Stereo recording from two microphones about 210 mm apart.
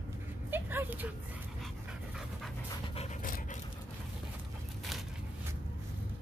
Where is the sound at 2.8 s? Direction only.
30° left (ahead or behind).